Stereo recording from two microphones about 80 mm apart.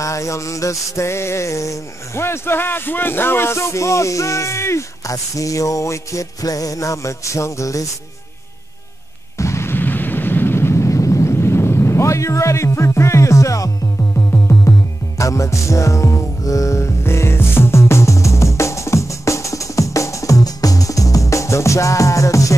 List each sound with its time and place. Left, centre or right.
0.0 s music: left
9.4 s a sound: left
14.1 s music: left